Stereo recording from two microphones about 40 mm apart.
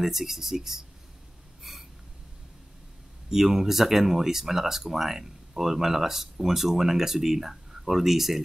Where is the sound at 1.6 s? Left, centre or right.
Centre.